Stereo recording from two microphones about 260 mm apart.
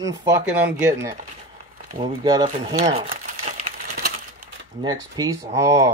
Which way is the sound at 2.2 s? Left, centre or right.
Centre.